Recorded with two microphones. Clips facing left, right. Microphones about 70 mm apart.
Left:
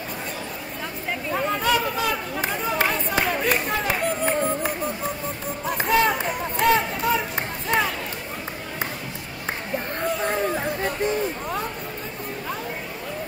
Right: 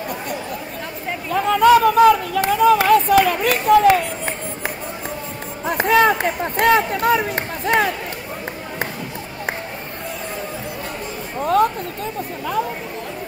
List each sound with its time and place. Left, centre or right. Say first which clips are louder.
1.3 s speech: right 10 dB; right
5.7 s speech: right 6 dB; right